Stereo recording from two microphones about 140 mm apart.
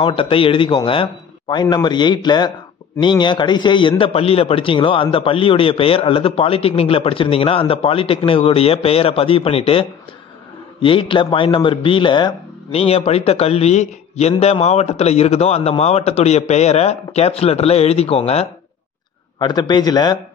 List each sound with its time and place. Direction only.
0.0 s a man's voice: 40° left (ahead or behind)
12.7 s a man's voice: 45° left (ahead or behind)
19.4 s a man's voice: 30° left (ahead or behind)